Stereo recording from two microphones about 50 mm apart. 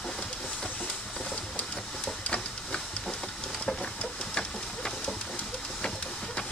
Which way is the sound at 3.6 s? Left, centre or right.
Centre.